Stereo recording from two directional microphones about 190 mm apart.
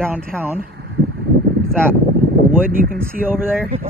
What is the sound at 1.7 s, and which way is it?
Speech, 5° left (ahead or behind).